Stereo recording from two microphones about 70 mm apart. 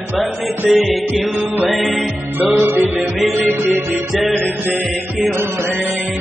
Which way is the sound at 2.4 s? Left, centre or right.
Right.